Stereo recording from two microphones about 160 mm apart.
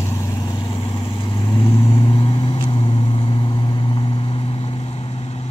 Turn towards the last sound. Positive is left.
turn(degrees=40)  # may be behind; listen again after turning